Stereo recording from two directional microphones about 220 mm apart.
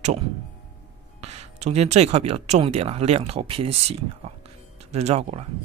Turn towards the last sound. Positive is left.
turn(degrees=-30)  # may be behind; listen again after turning